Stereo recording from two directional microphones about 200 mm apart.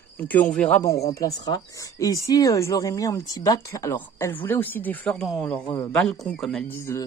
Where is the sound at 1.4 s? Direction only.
20° left (ahead or behind).